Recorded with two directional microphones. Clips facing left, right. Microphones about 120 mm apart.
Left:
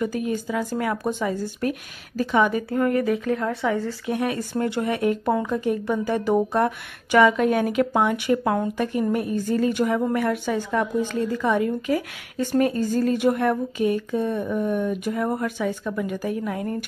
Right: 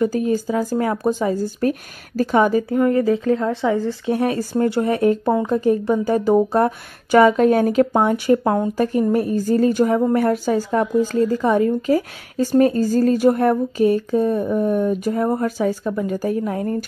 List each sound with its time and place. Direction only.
0.0 s speech: 35° right (ahead or behind)
2.7 s speech: 25° right (ahead or behind)